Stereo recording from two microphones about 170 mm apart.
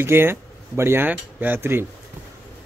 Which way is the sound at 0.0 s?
15° right (ahead or behind).